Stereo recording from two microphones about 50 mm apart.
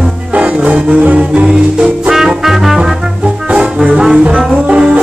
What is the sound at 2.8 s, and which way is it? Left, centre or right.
Brass instrument, centre.